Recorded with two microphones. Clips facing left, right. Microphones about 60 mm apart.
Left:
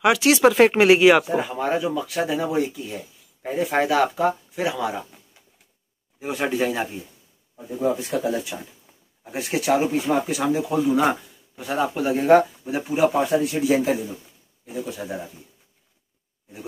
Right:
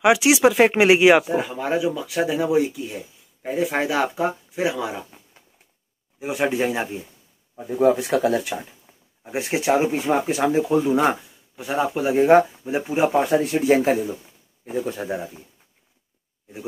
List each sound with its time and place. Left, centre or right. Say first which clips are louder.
0.0 s speech: right 1 dB; centre
1.6 s speech: even; centre
7.8 s speech: right 5 dB; right
8.8 s a sound: right 2 dB; centre
9.4 s speech: right 1 dB; right
11.0 s speech: right 1 dB; centre; by 15.4 s right